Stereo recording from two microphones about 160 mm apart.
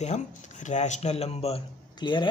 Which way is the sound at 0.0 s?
45° left (ahead or behind).